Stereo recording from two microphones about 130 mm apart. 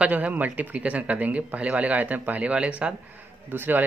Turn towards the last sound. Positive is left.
turn(degrees=-15)  # may be behind; listen again after turning